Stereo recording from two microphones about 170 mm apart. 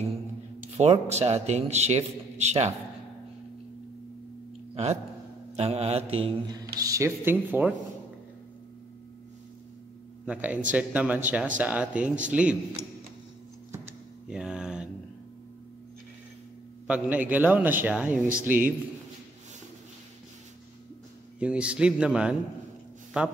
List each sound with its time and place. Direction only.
0.7 s a man's voice: 40° right (ahead or behind)
5.6 s a man's voice: 40° right (ahead or behind)
6.8 s speech: 15° right (ahead or behind)
10.2 s speech: 10° right (ahead or behind)
14.2 s a sound: 5° right (ahead or behind)
16.8 s speech: 10° right (ahead or behind)
21.4 s speech: 5° right (ahead or behind)